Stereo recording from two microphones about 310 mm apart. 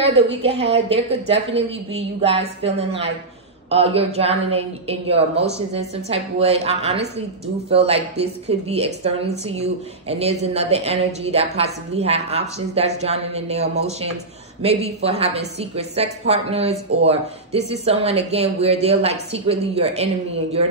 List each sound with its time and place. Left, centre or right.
0.0 s a woman's voice: centre